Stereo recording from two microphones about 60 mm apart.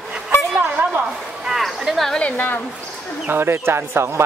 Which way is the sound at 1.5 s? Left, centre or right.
Centre.